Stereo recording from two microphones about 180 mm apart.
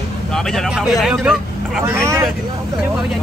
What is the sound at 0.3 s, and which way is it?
Speech, centre (ahead or behind).